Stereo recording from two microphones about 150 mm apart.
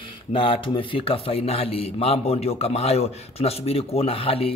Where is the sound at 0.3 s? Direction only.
35° left (ahead or behind).